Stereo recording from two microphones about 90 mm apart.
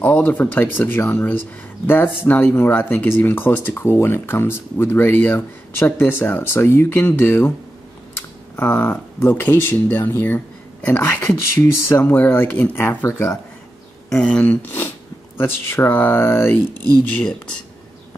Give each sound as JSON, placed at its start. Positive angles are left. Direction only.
{"t": 0.0, "sound": "speech", "side_deg": 25}
{"t": 8.5, "sound": "speech", "side_deg": 20}
{"t": 14.0, "sound": "speech", "side_deg": 10}
{"t": 16.7, "sound": "speech", "side_deg": -45}
{"t": 17.2, "sound": "speech", "side_deg": 10}